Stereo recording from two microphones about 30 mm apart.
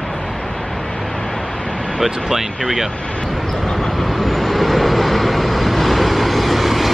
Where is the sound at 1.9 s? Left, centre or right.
Centre.